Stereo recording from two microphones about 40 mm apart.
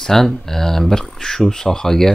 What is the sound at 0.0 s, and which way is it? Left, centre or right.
Speech, centre.